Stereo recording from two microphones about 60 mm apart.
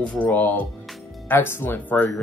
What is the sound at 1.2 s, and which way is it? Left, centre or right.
Speech, left.